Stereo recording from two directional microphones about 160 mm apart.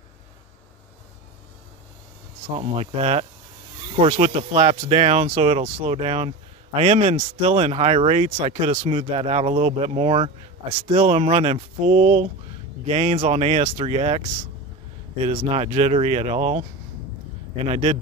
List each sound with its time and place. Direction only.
2.5 s speech: 40° right (ahead or behind)
17.6 s speech: 40° right (ahead or behind)